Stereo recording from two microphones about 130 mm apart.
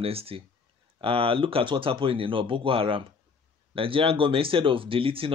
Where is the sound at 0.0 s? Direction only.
50° right (ahead or behind).